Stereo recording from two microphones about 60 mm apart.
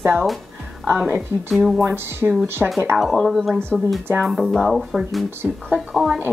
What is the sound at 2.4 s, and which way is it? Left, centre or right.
Speech, right.